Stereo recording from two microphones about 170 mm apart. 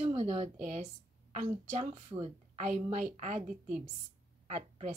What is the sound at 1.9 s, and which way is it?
A woman's voice, 35° right (ahead or behind).